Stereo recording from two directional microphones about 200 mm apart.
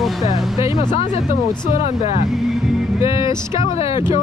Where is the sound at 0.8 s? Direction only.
20° left (ahead or behind).